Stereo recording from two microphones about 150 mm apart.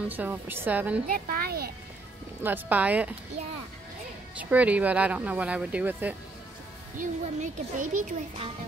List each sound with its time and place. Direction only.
0.1 s speech: 10° right (ahead or behind)
1.0 s speech: 75° right (ahead or behind); by 1.7 s 90° right
2.4 s speech: 10° right (ahead or behind)
4.4 s speech: 10° right (ahead or behind)
7.0 s speech: 60° right (ahead or behind)